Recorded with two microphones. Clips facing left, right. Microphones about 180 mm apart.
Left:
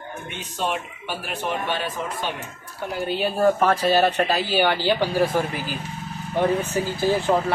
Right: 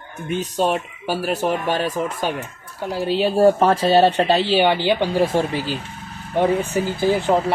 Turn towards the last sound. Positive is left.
turn(degrees=-15)  # may be behind; listen again after turning